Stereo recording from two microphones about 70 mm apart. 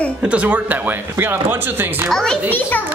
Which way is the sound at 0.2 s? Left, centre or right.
Centre.